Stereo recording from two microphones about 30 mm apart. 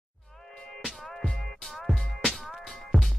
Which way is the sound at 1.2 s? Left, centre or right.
Left.